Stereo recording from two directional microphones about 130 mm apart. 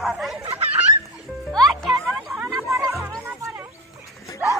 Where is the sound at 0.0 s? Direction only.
Centre (ahead or behind).